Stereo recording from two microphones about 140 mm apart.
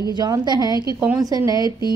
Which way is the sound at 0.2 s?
30° right (ahead or behind).